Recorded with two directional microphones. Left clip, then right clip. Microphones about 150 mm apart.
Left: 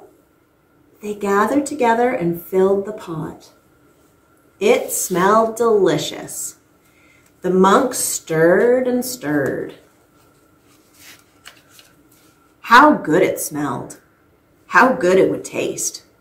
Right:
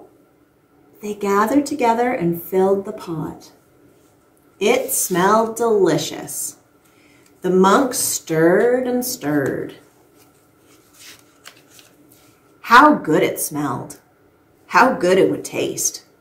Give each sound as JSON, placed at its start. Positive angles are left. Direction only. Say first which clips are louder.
{"t": 1.0, "sound": "speech", "louder": "left 1 dB", "side_deg": -15}
{"t": 4.6, "sound": "speech", "louder": "left 2 dB", "side_deg": -15}
{"t": 7.4, "sound": "speech", "louder": "left 1 dB", "side_deg": -20}
{"t": 11.0, "sound": "shuffling cards", "louder": "right 1 dB", "side_deg": 0}
{"t": 12.6, "sound": "speech", "louder": "even", "side_deg": -20}